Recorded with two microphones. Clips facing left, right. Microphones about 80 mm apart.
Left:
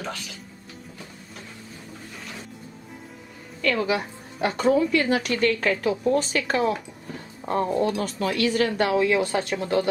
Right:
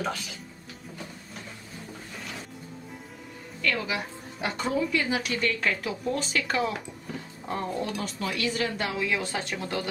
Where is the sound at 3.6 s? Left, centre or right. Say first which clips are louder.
Left 6 dB; left.